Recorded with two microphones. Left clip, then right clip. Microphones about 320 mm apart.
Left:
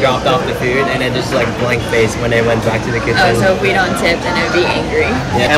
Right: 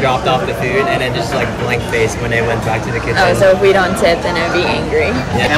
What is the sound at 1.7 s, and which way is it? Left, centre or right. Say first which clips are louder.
Speech: even; centre.